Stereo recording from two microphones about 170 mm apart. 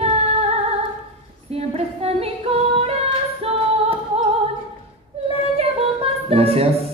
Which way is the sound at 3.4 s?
35° right (ahead or behind).